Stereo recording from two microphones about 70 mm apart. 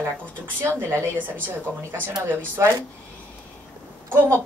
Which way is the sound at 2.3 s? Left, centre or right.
Right.